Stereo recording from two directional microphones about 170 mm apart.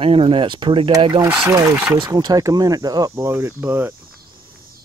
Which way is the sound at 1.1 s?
10° right (ahead or behind).